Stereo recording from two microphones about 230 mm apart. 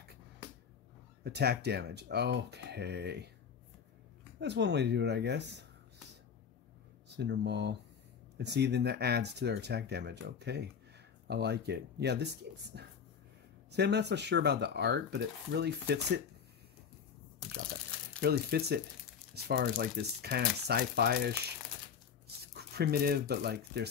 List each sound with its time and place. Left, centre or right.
1.2 s speech: right
4.4 s speech: right
7.2 s speech: right
18.2 s speech: right
22.4 s speech: right